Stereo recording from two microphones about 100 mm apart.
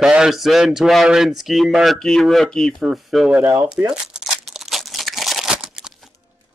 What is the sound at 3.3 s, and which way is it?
Speech, 20° right (ahead or behind).